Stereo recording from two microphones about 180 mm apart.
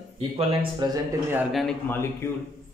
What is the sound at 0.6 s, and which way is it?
Speech, 25° right (ahead or behind).